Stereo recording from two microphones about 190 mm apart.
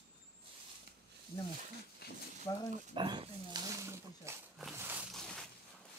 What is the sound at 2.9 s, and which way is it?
Pig, 30° right (ahead or behind).